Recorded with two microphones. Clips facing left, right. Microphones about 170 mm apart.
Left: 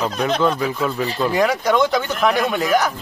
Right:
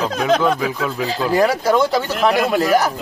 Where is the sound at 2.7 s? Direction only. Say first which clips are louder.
Right 2 dB; 35° right (ahead or behind).